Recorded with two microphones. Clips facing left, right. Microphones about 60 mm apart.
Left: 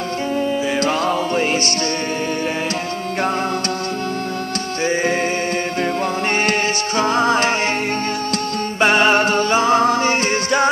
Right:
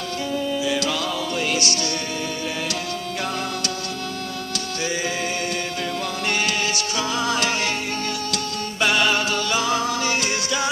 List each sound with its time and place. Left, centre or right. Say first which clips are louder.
0.7 s music: left 6 dB; left
7.0 s music: left 8 dB; left